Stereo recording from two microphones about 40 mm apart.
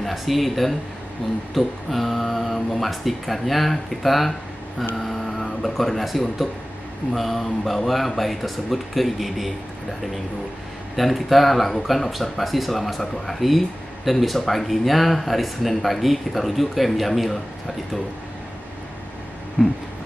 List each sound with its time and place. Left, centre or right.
0.0 s speech: centre
11.0 s speech: centre
19.6 s a sound: centre